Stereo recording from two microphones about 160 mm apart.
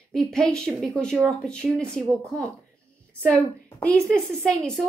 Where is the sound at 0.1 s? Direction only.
5° left (ahead or behind).